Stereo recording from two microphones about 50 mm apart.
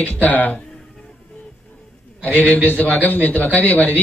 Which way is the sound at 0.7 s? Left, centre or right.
Centre.